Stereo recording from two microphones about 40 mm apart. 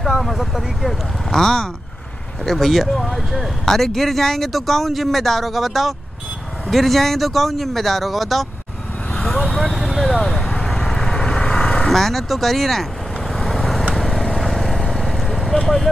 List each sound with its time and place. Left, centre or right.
0.0 s speech: centre
9.6 s a sound: centre
10.8 s vehicle: centre
11.9 s speech: centre
13.3 s vehicle: centre
15.6 s speech: centre